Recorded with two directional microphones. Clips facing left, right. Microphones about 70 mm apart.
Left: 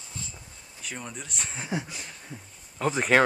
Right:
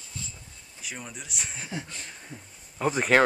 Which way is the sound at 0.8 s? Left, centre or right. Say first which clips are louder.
Left 2 dB; centre.